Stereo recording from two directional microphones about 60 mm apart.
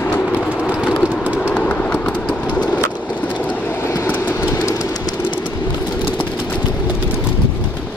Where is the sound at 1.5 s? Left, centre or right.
Left.